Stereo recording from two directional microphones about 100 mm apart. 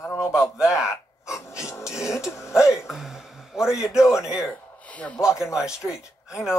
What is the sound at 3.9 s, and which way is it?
Speech, 5° right (ahead or behind).